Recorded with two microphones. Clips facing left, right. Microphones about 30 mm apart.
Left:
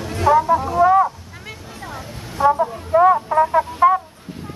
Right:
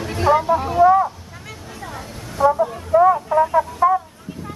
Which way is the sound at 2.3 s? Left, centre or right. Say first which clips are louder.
Even; centre.